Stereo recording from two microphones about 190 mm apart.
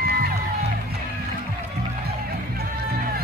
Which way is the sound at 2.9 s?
55° right (ahead or behind).